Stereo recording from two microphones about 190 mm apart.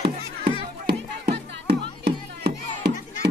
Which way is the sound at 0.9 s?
55° right (ahead or behind).